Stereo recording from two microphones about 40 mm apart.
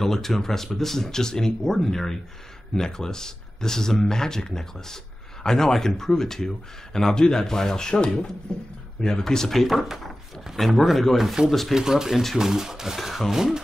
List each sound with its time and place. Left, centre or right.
0.0 s speech: centre
11.1 s speech: centre